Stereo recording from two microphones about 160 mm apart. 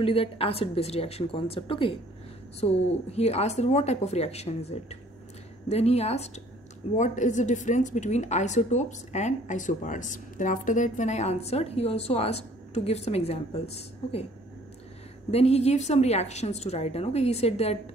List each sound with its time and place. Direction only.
0.0 s a woman's voice: 35° left (ahead or behind)
15.3 s a woman's voice: 40° left (ahead or behind)